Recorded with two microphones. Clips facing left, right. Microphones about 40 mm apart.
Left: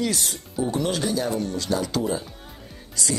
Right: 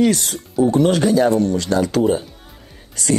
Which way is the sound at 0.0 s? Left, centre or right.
Right.